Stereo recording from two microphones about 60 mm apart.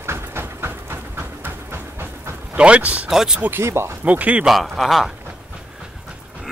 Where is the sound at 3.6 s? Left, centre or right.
Right.